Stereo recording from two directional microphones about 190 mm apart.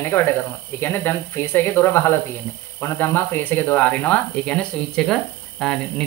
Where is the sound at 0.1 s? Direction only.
15° left (ahead or behind).